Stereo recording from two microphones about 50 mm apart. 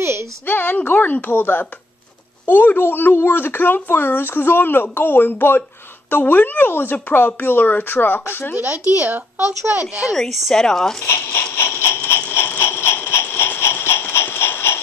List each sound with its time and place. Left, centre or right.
0.0 s a sound: right
0.5 s a woman's voice: left
8.7 s speech: left
10.1 s speech: centre
11.0 s speech: left
11.5 s a sound: left